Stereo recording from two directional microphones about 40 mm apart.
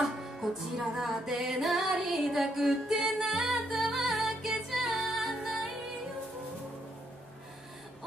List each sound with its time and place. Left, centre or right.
0.0 s music: centre